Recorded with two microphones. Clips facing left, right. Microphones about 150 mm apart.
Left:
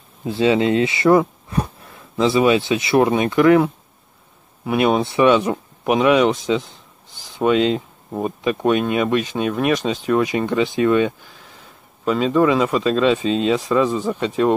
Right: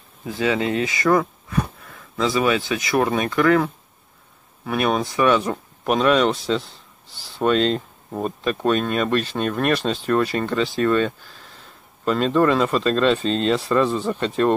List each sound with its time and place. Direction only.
0.2 s speech: 25° left (ahead or behind)
7.3 s speech: 10° left (ahead or behind)